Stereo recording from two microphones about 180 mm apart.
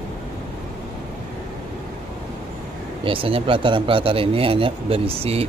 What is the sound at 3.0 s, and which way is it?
Speech, 30° right (ahead or behind).